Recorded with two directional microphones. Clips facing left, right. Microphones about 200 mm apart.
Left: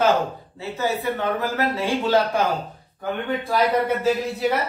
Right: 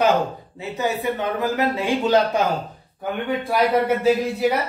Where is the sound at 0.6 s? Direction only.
15° right (ahead or behind).